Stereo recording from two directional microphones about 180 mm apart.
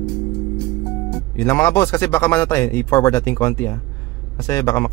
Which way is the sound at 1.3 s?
15° left (ahead or behind).